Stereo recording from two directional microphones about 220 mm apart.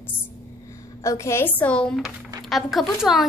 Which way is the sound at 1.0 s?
15° left (ahead or behind).